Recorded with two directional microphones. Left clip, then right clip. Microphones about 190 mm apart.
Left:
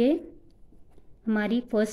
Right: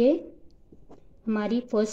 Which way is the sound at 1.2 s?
20° left (ahead or behind).